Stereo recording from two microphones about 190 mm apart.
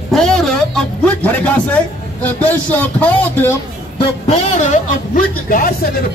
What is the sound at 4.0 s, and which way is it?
A man's voice, 35° left (ahead or behind).